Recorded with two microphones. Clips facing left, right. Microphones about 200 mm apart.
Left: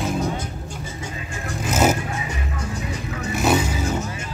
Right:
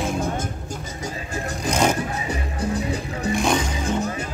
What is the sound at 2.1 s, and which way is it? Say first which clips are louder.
Music: right 2 dB; 35° right (ahead or behind).